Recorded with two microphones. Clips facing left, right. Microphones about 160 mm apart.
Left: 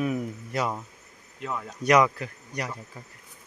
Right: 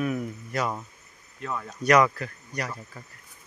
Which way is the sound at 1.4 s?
10° left (ahead or behind).